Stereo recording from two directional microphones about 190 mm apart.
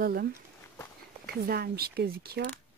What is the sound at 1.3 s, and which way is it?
Speech, 55° right (ahead or behind).